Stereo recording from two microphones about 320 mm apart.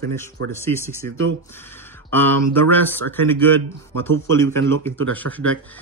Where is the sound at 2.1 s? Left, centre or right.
Centre.